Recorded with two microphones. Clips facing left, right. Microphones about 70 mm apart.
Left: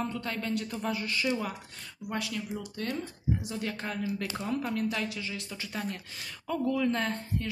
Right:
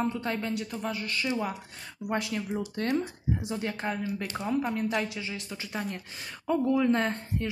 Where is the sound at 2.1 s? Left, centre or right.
Right; by 6.0 s centre.